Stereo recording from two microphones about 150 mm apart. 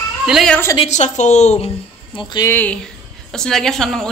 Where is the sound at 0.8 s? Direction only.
50° left (ahead or behind).